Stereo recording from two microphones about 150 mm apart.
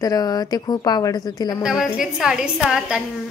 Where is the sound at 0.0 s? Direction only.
25° left (ahead or behind).